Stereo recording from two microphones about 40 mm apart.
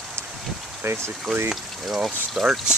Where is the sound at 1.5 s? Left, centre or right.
Centre.